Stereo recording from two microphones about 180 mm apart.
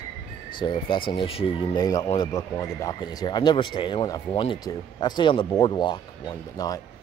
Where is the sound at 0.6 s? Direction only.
25° left (ahead or behind).